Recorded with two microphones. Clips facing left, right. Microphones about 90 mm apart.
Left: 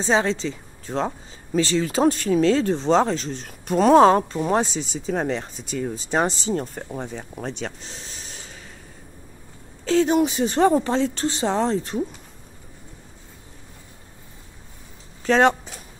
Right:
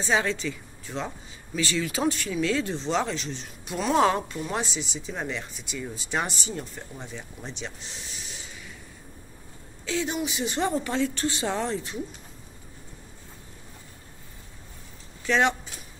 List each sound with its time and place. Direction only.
0.0 s speech: 30° left (ahead or behind); by 5.9 s 45° left (ahead or behind)
5.9 s speech: 35° left (ahead or behind)
6.5 s speech: 45° left (ahead or behind)
9.8 s speech: 40° left (ahead or behind)
15.2 s speech: 40° left (ahead or behind)